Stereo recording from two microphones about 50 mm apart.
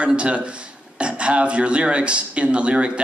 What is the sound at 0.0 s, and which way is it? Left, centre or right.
Speech, right.